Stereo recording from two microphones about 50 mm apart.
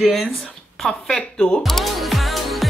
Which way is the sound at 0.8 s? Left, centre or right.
Centre.